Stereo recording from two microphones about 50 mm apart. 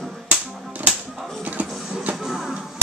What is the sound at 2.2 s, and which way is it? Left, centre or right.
Music, centre.